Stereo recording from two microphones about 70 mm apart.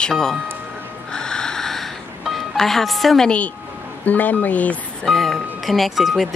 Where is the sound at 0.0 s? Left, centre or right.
Centre.